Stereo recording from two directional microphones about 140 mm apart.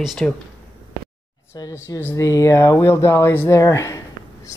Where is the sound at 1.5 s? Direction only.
25° left (ahead or behind).